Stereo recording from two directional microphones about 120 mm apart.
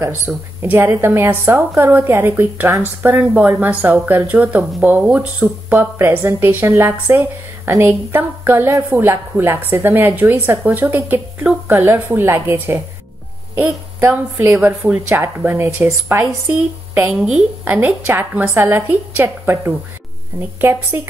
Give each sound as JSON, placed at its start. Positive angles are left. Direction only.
{"t": 0.6, "sound": "a woman's voice", "side_deg": -20}
{"t": 17.6, "sound": "a woman's voice", "side_deg": -15}